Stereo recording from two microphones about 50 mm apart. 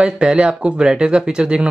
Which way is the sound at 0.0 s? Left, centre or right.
Centre.